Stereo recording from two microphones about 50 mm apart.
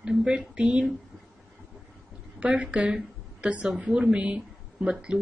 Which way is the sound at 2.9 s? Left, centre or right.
Right.